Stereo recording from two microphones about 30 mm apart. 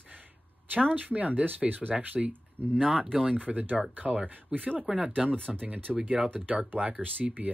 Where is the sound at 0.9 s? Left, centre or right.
Right.